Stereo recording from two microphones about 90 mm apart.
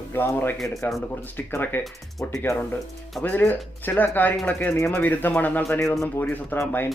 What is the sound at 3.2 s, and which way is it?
Speech, 20° left (ahead or behind).